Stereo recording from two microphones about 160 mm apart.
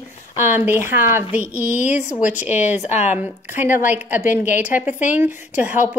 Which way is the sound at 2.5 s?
45° left (ahead or behind).